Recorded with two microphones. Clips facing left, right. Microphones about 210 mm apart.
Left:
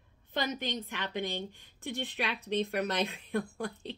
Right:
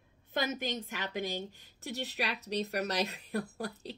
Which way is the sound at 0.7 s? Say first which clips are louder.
Even; 45° right (ahead or behind).